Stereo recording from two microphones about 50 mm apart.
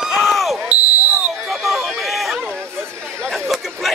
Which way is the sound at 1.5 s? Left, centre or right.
Centre.